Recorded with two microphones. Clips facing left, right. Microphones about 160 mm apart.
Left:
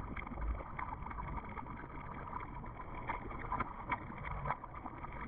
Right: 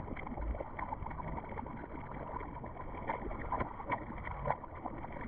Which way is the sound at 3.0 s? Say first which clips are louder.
Right 5 dB; 50° right (ahead or behind).